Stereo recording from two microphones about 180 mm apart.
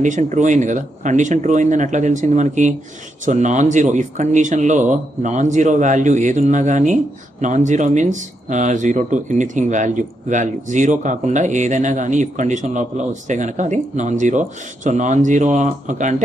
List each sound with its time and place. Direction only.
0.0 s speech: 45° right (ahead or behind)